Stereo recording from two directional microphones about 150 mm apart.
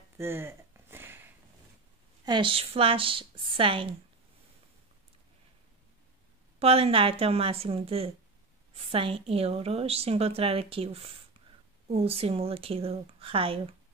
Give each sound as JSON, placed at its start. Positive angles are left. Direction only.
{"t": 0.2, "sound": "a sound", "side_deg": -15}
{"t": 2.2, "sound": "a woman's voice", "side_deg": -35}
{"t": 6.6, "sound": "a woman's voice", "side_deg": -40}